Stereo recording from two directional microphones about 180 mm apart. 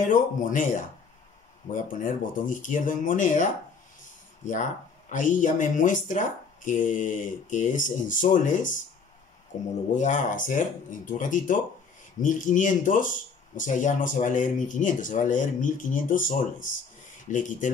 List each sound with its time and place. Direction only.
0.0 s speech: 45° left (ahead or behind)
5.1 s speech: 45° left (ahead or behind)
9.9 s speech: 45° left (ahead or behind)